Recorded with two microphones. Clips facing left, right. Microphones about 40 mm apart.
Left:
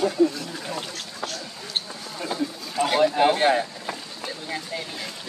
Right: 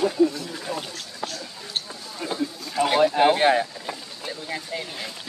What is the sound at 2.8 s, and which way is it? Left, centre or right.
Speech, centre.